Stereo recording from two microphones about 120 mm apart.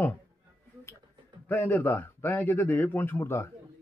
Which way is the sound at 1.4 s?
15° left (ahead or behind).